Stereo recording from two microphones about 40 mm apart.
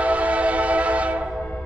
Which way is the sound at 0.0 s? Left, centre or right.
Right.